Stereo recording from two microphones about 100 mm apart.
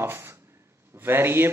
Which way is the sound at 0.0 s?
25° right (ahead or behind).